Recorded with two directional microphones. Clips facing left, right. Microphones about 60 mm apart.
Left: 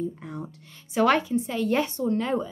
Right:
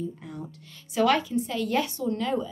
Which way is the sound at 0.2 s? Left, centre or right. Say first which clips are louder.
Left 2 dB; left.